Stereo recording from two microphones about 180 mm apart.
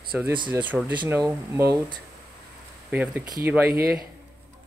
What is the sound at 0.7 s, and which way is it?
Speech, 10° right (ahead or behind).